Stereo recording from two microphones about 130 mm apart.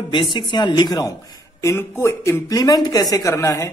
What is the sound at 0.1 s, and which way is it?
A man's voice, 35° left (ahead or behind).